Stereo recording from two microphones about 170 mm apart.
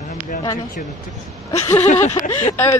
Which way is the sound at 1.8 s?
45° left (ahead or behind).